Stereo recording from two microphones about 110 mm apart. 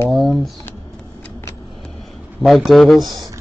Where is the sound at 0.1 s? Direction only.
Centre (ahead or behind).